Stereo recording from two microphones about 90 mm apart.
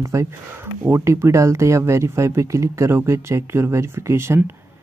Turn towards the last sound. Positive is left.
turn(degrees=-30)  # may be behind; listen again after turning